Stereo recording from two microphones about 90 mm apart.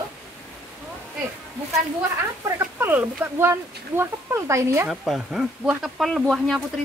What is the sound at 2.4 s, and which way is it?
Speech, 35° right (ahead or behind).